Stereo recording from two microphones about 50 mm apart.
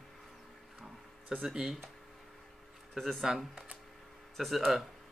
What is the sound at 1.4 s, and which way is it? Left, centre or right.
Speech, centre.